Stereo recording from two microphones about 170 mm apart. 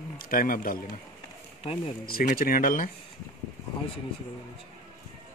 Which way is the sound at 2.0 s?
60° left (ahead or behind).